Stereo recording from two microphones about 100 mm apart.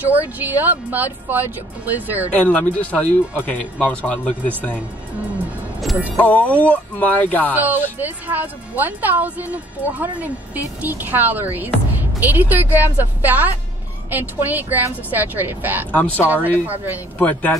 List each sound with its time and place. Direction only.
0.0 s speech: 15° right (ahead or behind)
2.3 s speech: 15° left (ahead or behind)
6.1 s speech: 15° left (ahead or behind)
7.5 s a woman's voice: 20° right (ahead or behind)
15.9 s speech: 15° left (ahead or behind)
16.3 s speech: 20° right (ahead or behind)
17.2 s speech: 15° left (ahead or behind)